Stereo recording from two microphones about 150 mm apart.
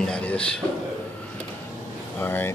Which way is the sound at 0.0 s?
5° left (ahead or behind).